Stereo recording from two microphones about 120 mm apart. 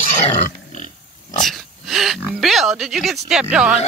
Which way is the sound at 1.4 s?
Centre (ahead or behind).